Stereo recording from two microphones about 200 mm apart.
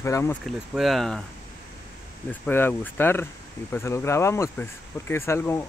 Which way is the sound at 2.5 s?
10° left (ahead or behind).